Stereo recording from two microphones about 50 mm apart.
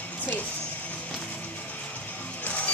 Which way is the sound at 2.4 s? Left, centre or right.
Left.